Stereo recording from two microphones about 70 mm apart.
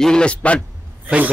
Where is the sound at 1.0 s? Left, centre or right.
Centre.